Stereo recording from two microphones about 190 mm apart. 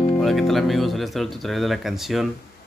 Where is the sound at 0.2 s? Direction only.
Centre (ahead or behind).